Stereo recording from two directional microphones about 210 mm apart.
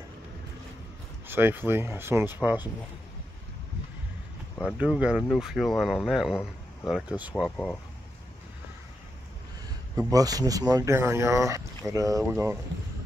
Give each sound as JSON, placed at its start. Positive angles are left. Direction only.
{"t": 1.2, "sound": "speech", "side_deg": -10}
{"t": 4.6, "sound": "speech", "side_deg": -5}
{"t": 10.1, "sound": "speech", "side_deg": -15}